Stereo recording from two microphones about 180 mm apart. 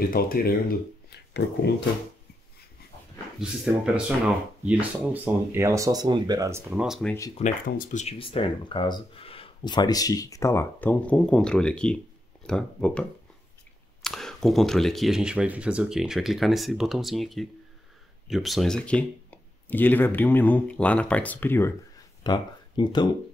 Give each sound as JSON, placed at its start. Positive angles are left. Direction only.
{"t": 0.1, "sound": "speech", "side_deg": 55}
{"t": 3.3, "sound": "speech", "side_deg": -5}
{"t": 6.8, "sound": "speech", "side_deg": 0}
{"t": 7.4, "sound": "speech", "side_deg": 40}
{"t": 14.0, "sound": "speech", "side_deg": 0}
{"t": 22.2, "sound": "speech", "side_deg": 25}